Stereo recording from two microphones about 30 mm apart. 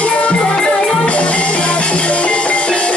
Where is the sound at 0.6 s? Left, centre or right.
Left.